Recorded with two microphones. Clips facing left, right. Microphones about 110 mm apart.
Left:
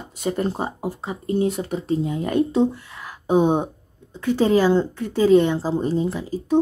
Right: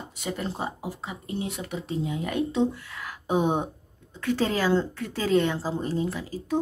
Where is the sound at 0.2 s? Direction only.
45° left (ahead or behind).